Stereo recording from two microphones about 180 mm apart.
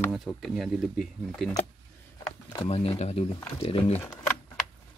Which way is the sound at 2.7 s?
35° left (ahead or behind).